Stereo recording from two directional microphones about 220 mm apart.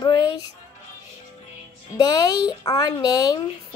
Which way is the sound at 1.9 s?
20° left (ahead or behind).